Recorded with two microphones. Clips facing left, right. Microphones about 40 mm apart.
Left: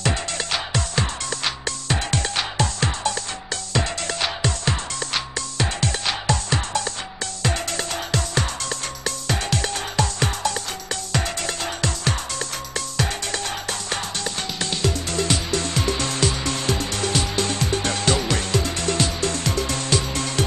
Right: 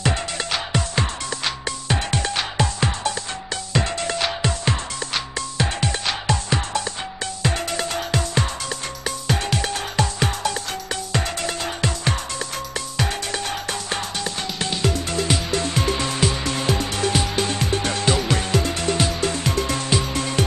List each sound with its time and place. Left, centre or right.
0.0 s music: centre